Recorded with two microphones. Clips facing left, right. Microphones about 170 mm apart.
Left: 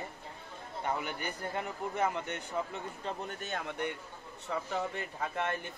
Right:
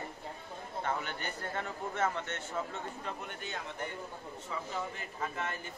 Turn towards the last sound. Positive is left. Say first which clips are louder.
# left 3 dB
turn(degrees=60)  # may be behind; listen again after turning